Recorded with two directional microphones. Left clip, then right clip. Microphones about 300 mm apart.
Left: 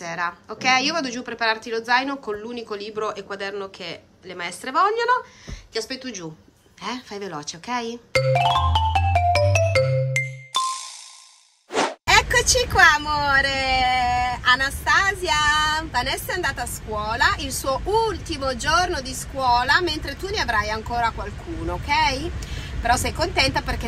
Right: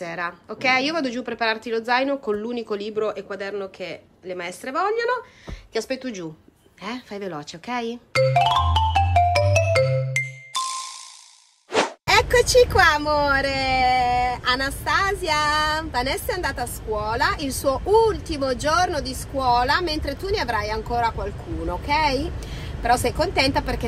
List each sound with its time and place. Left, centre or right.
0.0 s a woman's voice: centre
10.2 s music: centre
11.7 s plop: centre
12.1 s speech: centre